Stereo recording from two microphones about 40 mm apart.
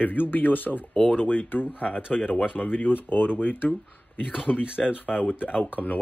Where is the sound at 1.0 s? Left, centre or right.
Left.